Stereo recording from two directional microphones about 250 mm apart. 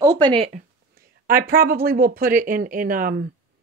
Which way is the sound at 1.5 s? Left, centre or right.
Right.